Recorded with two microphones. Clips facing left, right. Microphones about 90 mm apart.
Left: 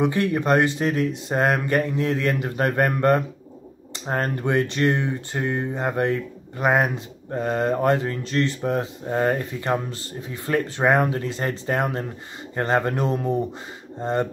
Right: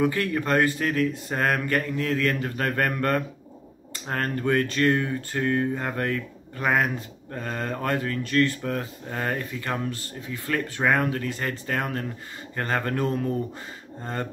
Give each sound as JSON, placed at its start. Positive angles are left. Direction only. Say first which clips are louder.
{"t": 0.0, "sound": "speech", "louder": "left 3 dB", "side_deg": 25}